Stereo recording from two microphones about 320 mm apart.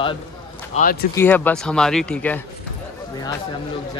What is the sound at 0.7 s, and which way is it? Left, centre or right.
Speech, left.